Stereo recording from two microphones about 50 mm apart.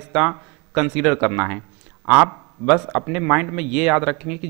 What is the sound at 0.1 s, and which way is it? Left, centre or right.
A man's voice, centre.